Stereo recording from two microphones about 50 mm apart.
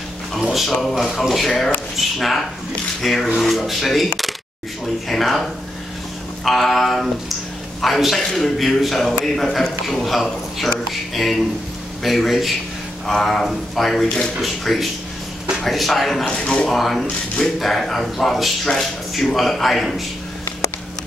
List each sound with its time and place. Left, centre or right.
0.3 s speech: centre
5.0 s a sound: centre
7.8 s a man's voice: centre
16.3 s speech: centre
16.7 s speech: centre